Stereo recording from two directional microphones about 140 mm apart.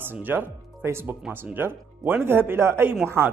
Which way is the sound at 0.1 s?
15° right (ahead or behind).